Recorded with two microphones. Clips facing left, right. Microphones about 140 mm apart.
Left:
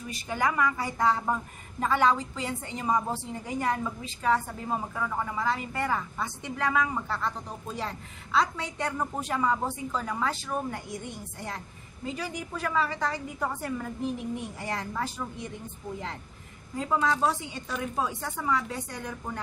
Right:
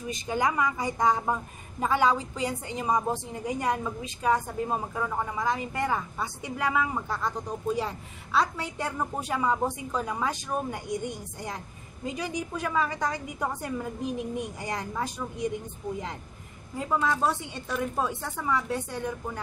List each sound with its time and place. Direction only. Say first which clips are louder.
0.1 s a woman's voice: right 1 dB; 20° right (ahead or behind)
12.2 s a woman's voice: right 3 dB; 15° right (ahead or behind)
16.7 s a woman's voice: even; 5° right (ahead or behind)